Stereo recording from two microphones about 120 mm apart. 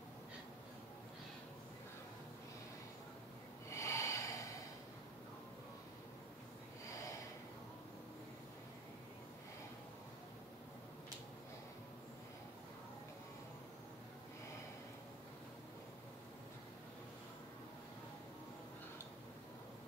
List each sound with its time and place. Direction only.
3.7 s snort: 25° left (ahead or behind)